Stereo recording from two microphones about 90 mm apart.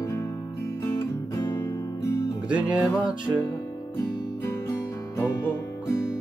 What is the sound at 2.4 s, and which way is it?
Music, 15° right (ahead or behind).